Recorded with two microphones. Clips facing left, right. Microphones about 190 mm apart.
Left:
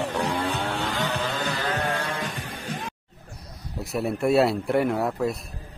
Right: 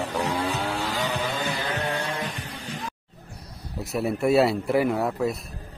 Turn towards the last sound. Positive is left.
turn(degrees=0)  # may be behind; listen again after turning